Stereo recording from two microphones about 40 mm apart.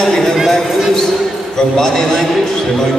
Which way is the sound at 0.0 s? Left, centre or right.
Centre.